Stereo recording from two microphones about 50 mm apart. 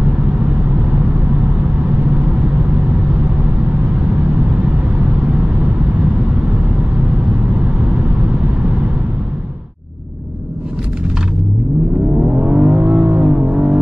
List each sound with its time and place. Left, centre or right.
12.2 s vehicle: centre